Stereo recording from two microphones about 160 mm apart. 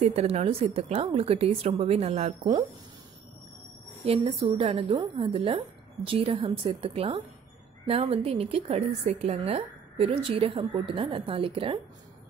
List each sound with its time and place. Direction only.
0.0 s a woman's voice: 40° right (ahead or behind)
4.0 s a woman's voice: 35° right (ahead or behind)